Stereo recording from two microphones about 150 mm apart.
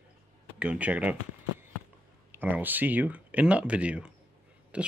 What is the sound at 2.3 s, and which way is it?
Speech, 10° right (ahead or behind).